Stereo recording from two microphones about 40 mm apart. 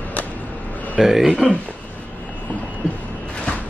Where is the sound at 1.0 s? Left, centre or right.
Centre.